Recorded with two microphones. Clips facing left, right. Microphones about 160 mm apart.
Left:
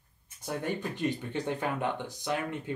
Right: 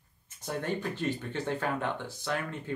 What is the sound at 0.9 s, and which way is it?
Speech, 15° left (ahead or behind).